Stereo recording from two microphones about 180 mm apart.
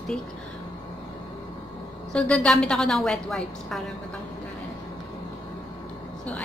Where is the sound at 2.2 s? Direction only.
5° left (ahead or behind).